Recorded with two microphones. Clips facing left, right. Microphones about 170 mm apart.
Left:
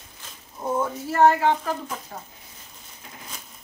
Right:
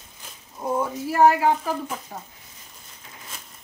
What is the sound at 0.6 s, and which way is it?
Speech, 10° right (ahead or behind).